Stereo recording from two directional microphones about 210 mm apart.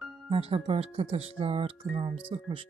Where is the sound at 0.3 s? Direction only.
25° right (ahead or behind).